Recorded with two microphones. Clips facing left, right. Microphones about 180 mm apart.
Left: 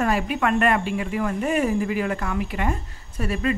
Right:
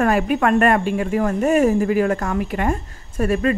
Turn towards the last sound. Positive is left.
turn(degrees=-50)  # may be behind; listen again after turning